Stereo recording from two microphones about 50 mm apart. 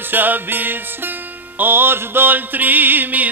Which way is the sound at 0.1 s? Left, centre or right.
Right.